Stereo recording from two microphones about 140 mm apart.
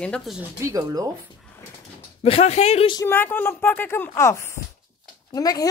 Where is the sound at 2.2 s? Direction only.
45° left (ahead or behind).